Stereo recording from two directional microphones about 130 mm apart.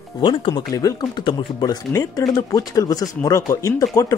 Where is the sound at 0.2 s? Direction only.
40° left (ahead or behind).